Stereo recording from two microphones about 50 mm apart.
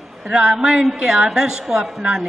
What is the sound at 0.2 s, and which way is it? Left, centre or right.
A woman's voice, centre.